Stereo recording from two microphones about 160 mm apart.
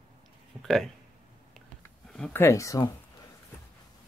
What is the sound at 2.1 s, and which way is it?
Speech, 10° left (ahead or behind).